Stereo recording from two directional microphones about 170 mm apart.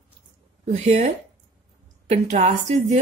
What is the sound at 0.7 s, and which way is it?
Speech, 40° right (ahead or behind).